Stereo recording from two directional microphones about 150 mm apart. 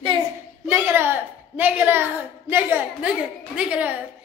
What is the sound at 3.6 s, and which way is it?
Speech, 10° right (ahead or behind).